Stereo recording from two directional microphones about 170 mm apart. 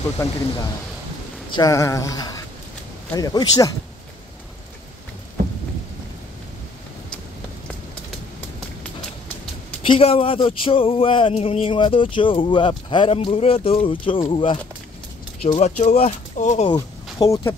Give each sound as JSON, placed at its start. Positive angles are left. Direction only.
{"t": 0.2, "sound": "speech", "side_deg": 15}
{"t": 1.5, "sound": "speech", "side_deg": 20}
{"t": 9.8, "sound": "speech", "side_deg": 35}
{"t": 15.4, "sound": "speech", "side_deg": 40}
{"t": 16.7, "sound": "speech", "side_deg": 20}